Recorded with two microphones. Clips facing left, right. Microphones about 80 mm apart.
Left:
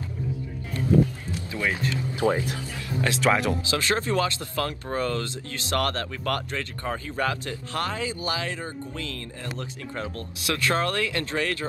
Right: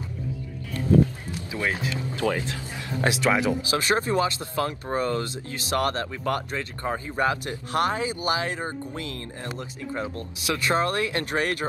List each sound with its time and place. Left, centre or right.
1.3 s speech: centre
2.1 s speech: left
2.7 s speech: right
3.2 s speech: centre
3.7 s speech: right